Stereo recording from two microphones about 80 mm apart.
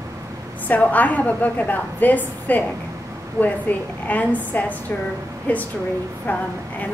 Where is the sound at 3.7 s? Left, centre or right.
Left.